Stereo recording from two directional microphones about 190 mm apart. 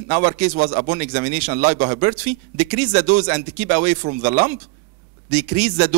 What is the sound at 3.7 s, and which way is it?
Speech, 50° right (ahead or behind).